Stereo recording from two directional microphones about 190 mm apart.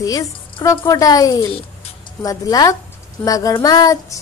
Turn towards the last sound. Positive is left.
turn(degrees=20)  # may be behind; listen again after turning